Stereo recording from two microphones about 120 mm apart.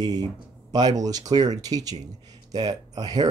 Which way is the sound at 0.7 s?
30° right (ahead or behind).